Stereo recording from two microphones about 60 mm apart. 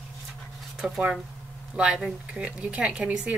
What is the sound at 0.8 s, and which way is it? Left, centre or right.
A woman's voice, centre.